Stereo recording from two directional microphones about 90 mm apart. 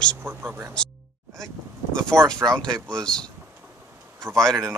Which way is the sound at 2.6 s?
10° left (ahead or behind).